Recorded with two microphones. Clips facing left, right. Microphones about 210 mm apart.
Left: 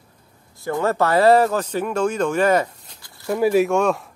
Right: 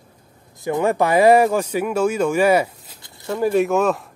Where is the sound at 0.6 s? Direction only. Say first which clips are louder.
Right 2 dB; 15° right (ahead or behind).